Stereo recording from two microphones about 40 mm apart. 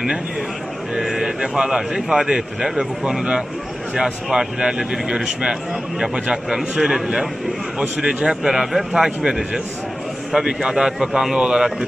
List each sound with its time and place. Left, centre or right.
1.0 s speech: centre
8.3 s speech: centre